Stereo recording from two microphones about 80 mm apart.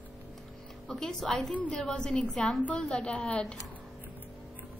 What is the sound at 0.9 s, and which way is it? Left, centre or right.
Speech, centre.